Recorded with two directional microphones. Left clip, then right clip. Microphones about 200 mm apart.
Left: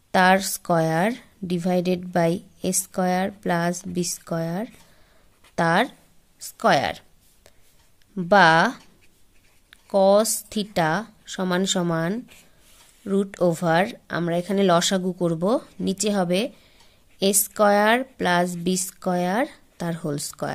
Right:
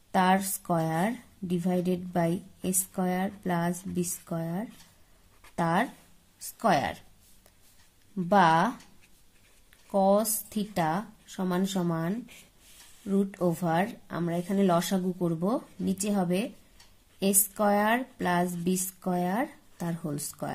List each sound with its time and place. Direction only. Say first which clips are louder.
0.1 s a woman's voice: left 7 dB; 40° left (ahead or behind)
8.2 s a woman's voice: left 7 dB; 45° left (ahead or behind)